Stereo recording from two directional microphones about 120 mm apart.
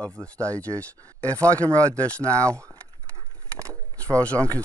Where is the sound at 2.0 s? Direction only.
10° left (ahead or behind).